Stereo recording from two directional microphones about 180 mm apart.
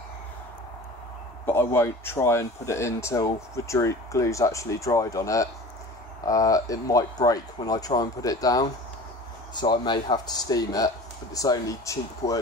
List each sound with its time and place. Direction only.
1.4 s speech: 15° left (ahead or behind)